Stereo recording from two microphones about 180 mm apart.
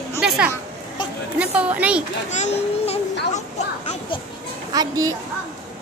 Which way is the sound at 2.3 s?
40° left (ahead or behind).